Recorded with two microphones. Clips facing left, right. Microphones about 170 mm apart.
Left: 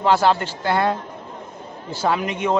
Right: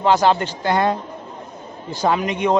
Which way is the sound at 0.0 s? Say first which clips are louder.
Right 1 dB; 5° left (ahead or behind).